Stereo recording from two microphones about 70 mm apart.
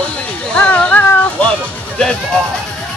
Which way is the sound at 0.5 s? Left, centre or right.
Left.